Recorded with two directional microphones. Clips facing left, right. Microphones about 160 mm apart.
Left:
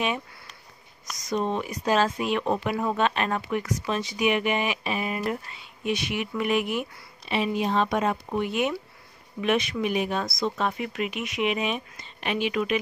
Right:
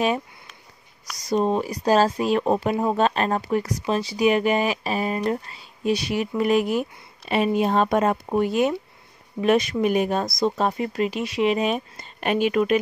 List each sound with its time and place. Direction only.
1.1 s speech: 35° right (ahead or behind)